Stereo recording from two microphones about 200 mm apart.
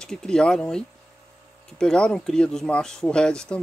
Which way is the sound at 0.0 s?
5° left (ahead or behind).